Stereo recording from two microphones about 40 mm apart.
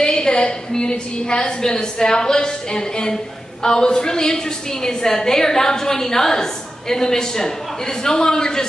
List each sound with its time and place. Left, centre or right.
0.0 s a woman's voice: centre